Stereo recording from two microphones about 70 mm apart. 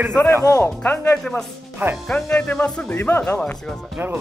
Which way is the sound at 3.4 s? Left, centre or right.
Centre.